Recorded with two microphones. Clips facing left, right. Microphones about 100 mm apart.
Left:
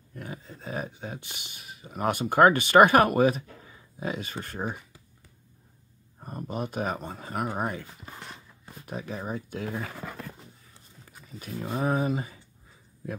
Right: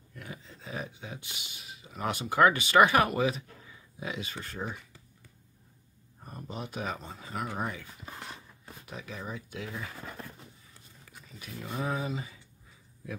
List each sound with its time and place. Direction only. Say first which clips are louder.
0.1 s speech: left 5 dB; 40° left (ahead or behind)
6.2 s speech: left 7 dB; 45° left (ahead or behind)
8.1 s a sound: even; 5° right (ahead or behind)
8.8 s speech: left 6 dB; 40° left (ahead or behind)
11.3 s speech: left 5 dB; 40° left (ahead or behind)